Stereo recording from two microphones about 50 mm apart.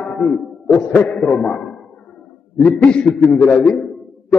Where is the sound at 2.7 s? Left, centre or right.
Left.